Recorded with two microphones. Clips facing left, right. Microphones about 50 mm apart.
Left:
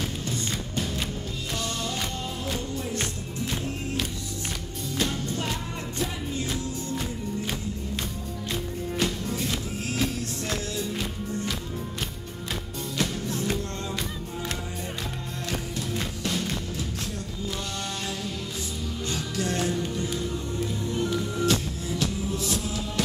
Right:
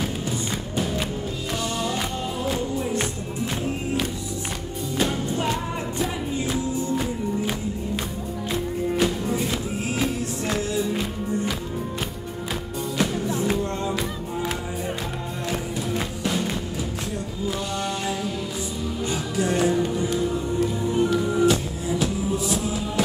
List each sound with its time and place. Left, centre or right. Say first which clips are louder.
0.0 s music: right 4 dB; centre
2.4 s music: right 7 dB; centre
4.9 s music: right 4 dB; centre
12.9 s music: right 5 dB; centre
15.5 s music: right 4 dB; centre
19.0 s music: right 5 dB; centre